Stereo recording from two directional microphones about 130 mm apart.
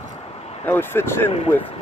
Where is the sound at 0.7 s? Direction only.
15° left (ahead or behind).